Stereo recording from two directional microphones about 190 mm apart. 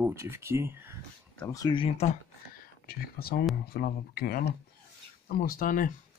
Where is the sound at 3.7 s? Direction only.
55° left (ahead or behind).